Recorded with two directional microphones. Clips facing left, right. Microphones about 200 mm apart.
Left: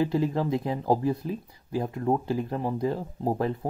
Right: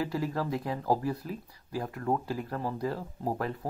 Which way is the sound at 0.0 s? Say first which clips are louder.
Left 6 dB; 20° left (ahead or behind).